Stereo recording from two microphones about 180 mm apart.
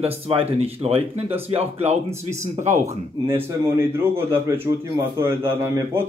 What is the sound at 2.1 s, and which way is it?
A man's voice, 15° right (ahead or behind).